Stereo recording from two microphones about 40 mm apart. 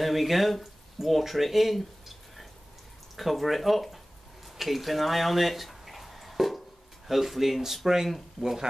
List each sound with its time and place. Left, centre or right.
0.0 s speech: centre
4.6 s a sound: centre
7.1 s speech: centre